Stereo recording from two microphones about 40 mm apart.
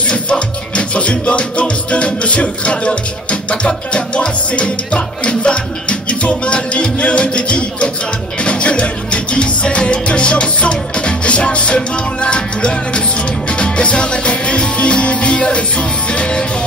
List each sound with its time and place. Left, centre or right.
0.0 s music: left